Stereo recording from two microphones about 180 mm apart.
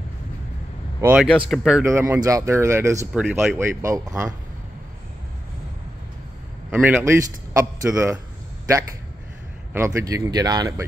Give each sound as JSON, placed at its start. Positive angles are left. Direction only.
{"t": 1.0, "sound": "speech", "side_deg": -5}
{"t": 1.9, "sound": "speech", "side_deg": -15}
{"t": 3.2, "sound": "speech", "side_deg": -5}
{"t": 3.5, "sound": "speech", "side_deg": -15}
{"t": 6.7, "sound": "speech", "side_deg": -10}
{"t": 9.8, "sound": "speech", "side_deg": -15}